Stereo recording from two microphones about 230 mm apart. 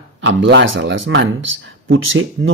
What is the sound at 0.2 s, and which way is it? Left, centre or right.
Speech, right.